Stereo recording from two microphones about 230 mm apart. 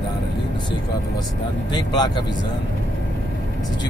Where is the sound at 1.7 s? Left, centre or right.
Centre.